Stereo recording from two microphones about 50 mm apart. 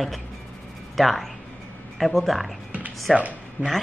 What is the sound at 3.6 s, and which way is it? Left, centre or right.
Speech, right.